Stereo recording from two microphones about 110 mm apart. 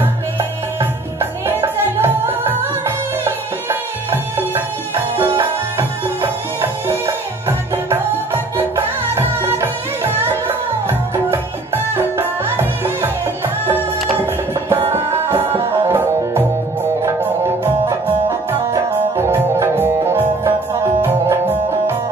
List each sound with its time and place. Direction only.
0.0 s music: 20° right (ahead or behind)
14.2 s music: 25° right (ahead or behind)
18.5 s music: 25° right (ahead or behind)